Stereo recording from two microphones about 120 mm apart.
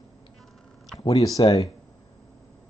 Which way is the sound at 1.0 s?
30° left (ahead or behind).